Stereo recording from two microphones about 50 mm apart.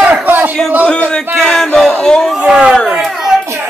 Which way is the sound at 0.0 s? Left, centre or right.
Right.